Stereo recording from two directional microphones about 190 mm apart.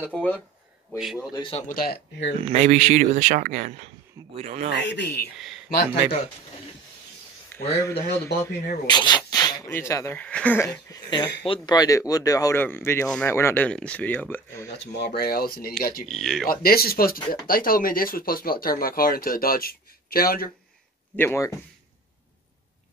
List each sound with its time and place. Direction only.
0.0 s speech: 10° left (ahead or behind)
0.9 s speech: 5° right (ahead or behind)
1.3 s speech: 25° left (ahead or behind)
1.7 s speech: 50° left (ahead or behind)
2.4 s speech: 35° right (ahead or behind)
4.7 s speech: 65° left (ahead or behind)
7.5 s speech: 15° left (ahead or behind)
14.7 s speech: 60° left (ahead or behind)
16.1 s speech: centre (ahead or behind)
16.4 s speech: 50° left (ahead or behind)
21.2 s speech: 15° left (ahead or behind)